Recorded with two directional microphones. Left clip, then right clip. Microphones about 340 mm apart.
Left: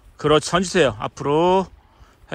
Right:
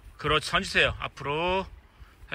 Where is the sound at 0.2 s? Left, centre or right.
Centre.